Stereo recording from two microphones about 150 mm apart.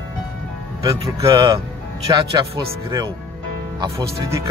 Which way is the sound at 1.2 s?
20° right (ahead or behind).